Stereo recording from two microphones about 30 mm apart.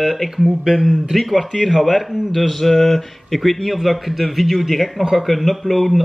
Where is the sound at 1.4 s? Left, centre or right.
Centre.